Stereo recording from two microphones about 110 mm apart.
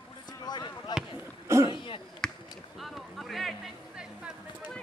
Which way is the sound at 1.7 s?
50° left (ahead or behind).